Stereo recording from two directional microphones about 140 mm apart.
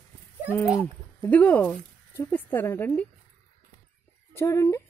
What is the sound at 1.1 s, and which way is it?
Speech, 10° left (ahead or behind).